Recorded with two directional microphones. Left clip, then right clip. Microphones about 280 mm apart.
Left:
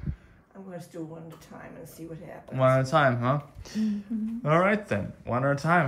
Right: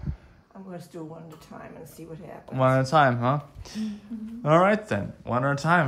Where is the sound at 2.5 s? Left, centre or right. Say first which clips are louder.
Right 1 dB; centre.